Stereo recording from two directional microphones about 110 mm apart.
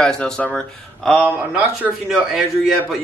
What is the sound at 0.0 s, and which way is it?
A man's voice, 5° left (ahead or behind).